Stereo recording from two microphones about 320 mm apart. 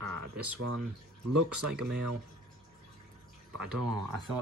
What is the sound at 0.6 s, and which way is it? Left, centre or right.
Speech, right.